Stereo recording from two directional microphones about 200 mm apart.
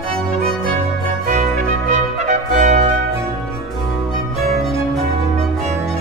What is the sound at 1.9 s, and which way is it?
Music, 35° right (ahead or behind).